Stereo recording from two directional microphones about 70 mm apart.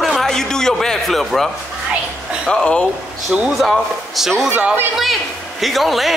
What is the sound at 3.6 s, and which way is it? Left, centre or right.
Speech, centre.